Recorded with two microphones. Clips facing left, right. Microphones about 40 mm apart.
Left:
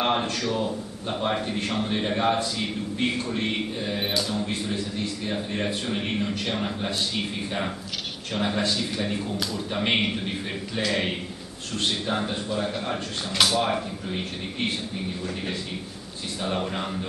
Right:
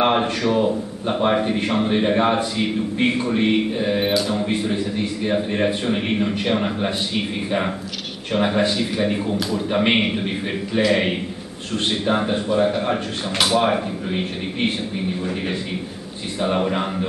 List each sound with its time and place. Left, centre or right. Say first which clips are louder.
0.0 s a man's voice: right 6 dB; right
16.3 s a man's voice: right 8 dB; right